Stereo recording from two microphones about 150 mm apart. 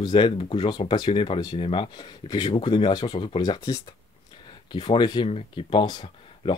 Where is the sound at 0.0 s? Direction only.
30° left (ahead or behind).